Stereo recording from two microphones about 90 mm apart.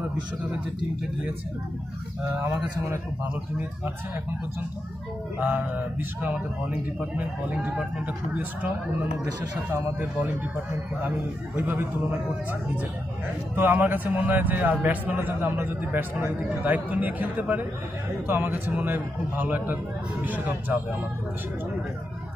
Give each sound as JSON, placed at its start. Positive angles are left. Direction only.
{"t": 5.4, "sound": "a man's voice", "side_deg": -25}
{"t": 13.6, "sound": "a man's voice", "side_deg": -20}